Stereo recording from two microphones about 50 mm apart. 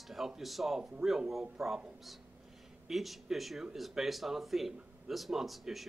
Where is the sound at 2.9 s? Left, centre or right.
Centre.